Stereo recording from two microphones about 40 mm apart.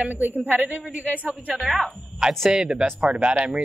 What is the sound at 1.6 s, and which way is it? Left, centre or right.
Speech, centre.